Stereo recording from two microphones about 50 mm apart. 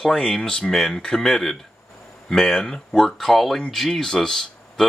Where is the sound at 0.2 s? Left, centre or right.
Centre.